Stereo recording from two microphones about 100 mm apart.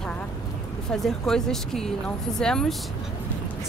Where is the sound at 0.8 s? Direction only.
5° left (ahead or behind).